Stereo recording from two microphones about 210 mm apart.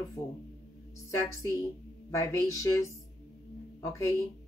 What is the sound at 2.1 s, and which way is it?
Speech, 15° left (ahead or behind).